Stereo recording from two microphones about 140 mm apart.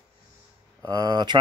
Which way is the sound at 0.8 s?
30° right (ahead or behind).